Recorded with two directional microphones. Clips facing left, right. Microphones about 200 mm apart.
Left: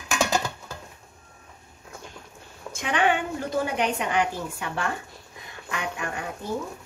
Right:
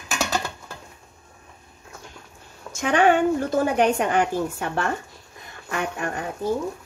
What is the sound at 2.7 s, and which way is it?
A woman's voice, 45° right (ahead or behind).